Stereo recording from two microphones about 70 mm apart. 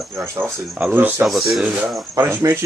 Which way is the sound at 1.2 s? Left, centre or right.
Centre.